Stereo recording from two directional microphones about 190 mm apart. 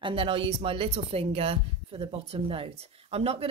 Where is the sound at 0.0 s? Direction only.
30° right (ahead or behind).